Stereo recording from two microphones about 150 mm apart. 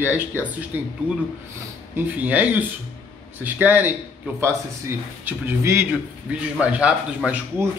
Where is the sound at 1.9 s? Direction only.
10° right (ahead or behind).